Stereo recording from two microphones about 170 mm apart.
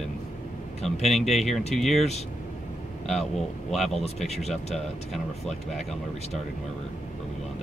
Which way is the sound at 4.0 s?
40° left (ahead or behind).